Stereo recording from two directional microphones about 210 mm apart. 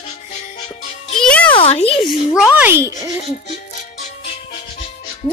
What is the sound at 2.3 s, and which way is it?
Speech, 5° right (ahead or behind).